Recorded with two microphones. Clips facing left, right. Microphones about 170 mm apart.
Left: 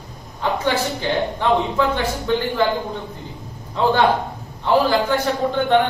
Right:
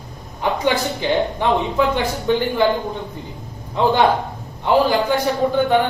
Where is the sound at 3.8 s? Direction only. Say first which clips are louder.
Right 1 dB; 15° right (ahead or behind).